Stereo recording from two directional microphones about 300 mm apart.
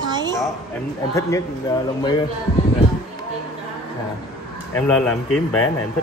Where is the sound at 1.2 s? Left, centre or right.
Centre.